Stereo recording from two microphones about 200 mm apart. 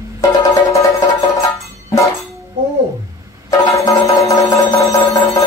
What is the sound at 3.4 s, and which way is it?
Music, 15° left (ahead or behind).